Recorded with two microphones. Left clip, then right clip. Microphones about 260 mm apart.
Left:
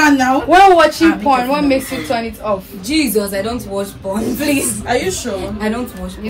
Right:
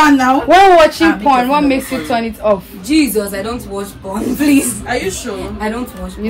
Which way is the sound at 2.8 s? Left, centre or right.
Centre.